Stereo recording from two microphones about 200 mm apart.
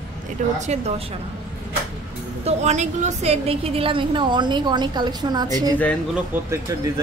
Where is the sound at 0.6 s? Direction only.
35° right (ahead or behind).